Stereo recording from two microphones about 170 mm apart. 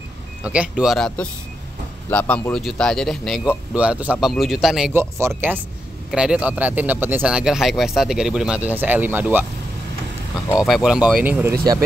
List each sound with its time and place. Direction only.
0.4 s a man's voice: 5° right (ahead or behind)
5.2 s a man's voice: 15° right (ahead or behind)
10.6 s a man's voice: 5° right (ahead or behind)